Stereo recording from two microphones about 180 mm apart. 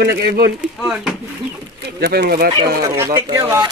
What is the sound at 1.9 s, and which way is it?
Speech, 60° right (ahead or behind).